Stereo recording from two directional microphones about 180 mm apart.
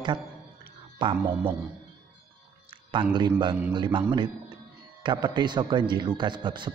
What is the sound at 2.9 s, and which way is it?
A man's voice, 25° right (ahead or behind).